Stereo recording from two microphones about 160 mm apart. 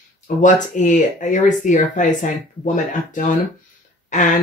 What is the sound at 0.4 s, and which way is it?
Speech, 50° left (ahead or behind).